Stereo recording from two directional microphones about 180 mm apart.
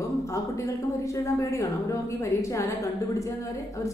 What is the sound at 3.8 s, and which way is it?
Speech, 15° left (ahead or behind).